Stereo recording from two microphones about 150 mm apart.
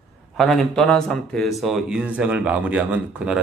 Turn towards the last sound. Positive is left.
turn(degrees=-5)  # may be behind; listen again after turning